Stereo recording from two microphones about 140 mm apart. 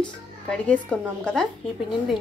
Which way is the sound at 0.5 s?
10° left (ahead or behind).